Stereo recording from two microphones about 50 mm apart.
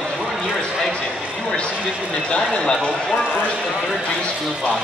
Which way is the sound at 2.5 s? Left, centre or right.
Centre.